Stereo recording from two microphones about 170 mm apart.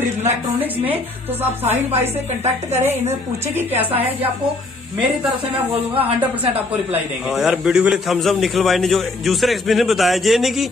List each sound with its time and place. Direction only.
1.6 s speech: 40° right (ahead or behind)
3.5 s a woman's voice: 10° right (ahead or behind)
7.2 s a man's voice: centre (ahead or behind)